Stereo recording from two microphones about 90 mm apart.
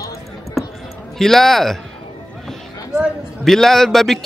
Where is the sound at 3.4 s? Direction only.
5° left (ahead or behind).